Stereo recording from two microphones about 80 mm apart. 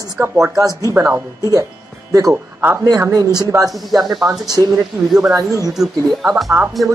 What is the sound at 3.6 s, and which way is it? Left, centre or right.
Speech, centre.